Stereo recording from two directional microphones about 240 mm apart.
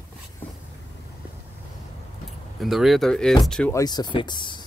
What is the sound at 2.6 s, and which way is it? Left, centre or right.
Speech, centre.